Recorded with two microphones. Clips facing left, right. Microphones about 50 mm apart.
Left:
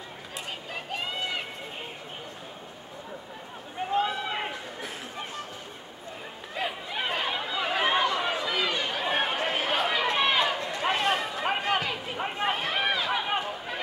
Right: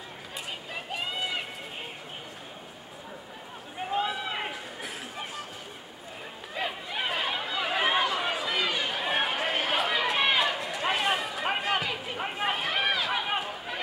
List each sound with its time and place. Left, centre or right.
0.9 s run: centre
3.8 s a sound: centre
6.5 s chatter: centre